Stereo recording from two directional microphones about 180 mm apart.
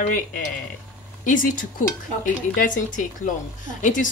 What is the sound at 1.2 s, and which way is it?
Speech, 45° left (ahead or behind).